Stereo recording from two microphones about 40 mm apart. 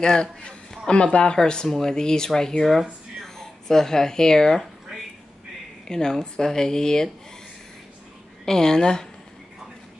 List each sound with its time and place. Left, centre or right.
0.0 s speech: left
5.9 s speech: centre
8.5 s speech: centre